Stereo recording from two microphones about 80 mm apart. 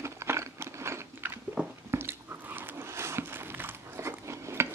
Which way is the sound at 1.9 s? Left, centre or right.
Right.